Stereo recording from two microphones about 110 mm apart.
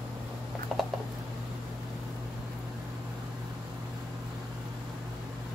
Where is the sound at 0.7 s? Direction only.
Centre (ahead or behind).